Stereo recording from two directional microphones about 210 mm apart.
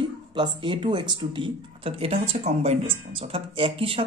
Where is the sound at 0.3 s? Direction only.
25° right (ahead or behind).